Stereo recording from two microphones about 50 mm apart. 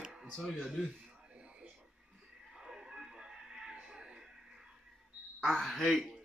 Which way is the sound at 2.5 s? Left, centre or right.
Centre.